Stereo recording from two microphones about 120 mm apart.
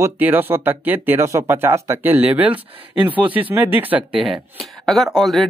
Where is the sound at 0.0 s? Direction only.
15° right (ahead or behind).